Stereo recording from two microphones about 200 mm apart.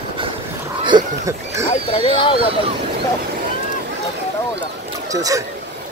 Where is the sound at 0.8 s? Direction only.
20° right (ahead or behind).